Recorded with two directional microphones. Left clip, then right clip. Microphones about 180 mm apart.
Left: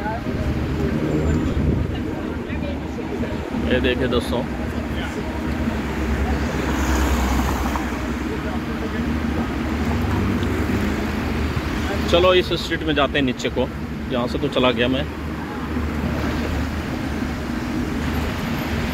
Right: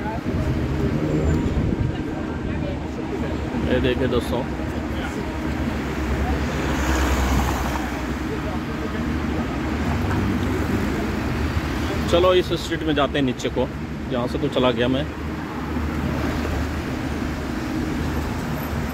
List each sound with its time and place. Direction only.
3.7 s speech: 20° right (ahead or behind)
12.1 s speech: 10° right (ahead or behind)